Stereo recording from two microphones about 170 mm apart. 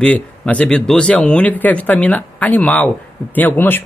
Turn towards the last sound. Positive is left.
turn(degrees=10)  # may be behind; listen again after turning